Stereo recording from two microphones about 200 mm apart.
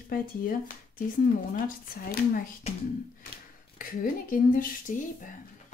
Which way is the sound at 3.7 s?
45° left (ahead or behind).